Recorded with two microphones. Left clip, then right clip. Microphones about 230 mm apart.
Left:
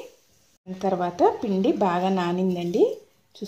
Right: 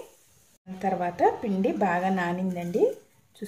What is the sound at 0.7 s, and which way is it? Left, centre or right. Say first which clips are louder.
A woman's voice: left 3 dB; left.